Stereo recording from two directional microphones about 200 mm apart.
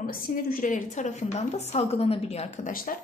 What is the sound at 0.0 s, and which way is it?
A woman's voice, 45° left (ahead or behind).